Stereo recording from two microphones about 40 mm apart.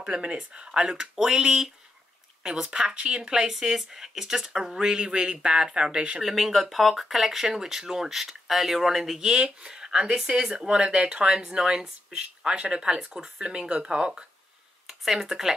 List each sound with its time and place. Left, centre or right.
0.0 s speech: right
3.2 s speech: centre
6.2 s speech: centre
9.4 s speech: centre
14.9 s speech: centre